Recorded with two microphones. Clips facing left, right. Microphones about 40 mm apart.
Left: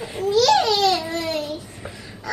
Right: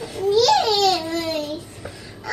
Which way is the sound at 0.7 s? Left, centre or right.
Centre.